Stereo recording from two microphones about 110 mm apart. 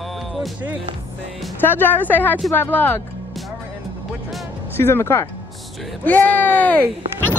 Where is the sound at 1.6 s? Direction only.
20° left (ahead or behind).